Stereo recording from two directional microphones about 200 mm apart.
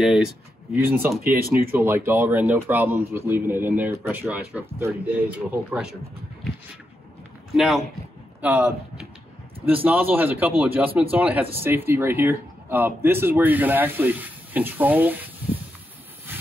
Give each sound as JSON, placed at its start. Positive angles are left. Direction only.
{"t": 0.0, "sound": "speech", "side_deg": 0}
{"t": 7.5, "sound": "speech", "side_deg": 0}